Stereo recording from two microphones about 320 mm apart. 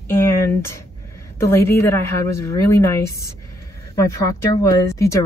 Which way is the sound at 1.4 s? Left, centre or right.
Centre.